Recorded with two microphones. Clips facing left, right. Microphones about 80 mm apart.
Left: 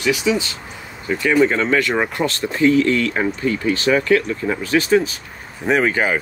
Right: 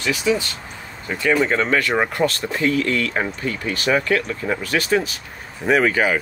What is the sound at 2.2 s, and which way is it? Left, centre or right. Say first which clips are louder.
Speech: left 3 dB; left.